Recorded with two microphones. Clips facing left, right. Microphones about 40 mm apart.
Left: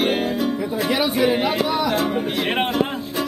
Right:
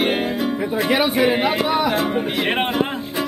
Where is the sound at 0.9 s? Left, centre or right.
Right.